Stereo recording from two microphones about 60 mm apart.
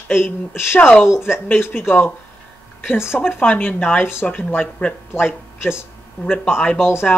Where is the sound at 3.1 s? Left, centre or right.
Left.